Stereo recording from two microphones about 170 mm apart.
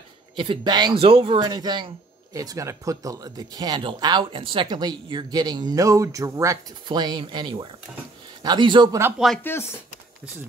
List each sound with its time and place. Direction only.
0.4 s speech: 25° right (ahead or behind)
9.4 s speech: 15° left (ahead or behind)